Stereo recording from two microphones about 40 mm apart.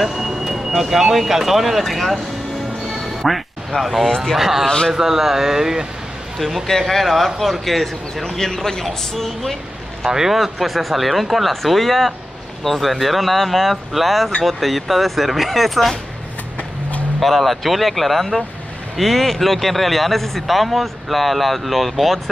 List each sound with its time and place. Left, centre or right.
0.0 s speech: centre
2.9 s quack: centre
3.7 s speech: left
4.4 s speech: centre
4.6 s speech: left
4.9 s speech: centre
6.3 s speech: centre
10.0 s speech: centre
17.2 s speech: centre